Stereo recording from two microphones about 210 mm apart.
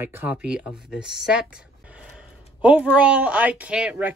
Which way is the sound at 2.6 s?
5° right (ahead or behind).